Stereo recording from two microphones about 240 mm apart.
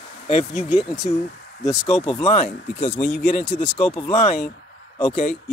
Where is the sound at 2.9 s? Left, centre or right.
Centre.